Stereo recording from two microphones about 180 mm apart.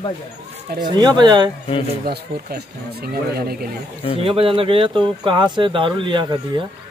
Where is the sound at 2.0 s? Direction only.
60° right (ahead or behind).